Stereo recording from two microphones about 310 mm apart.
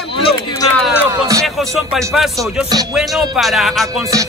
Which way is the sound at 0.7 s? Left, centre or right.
Centre.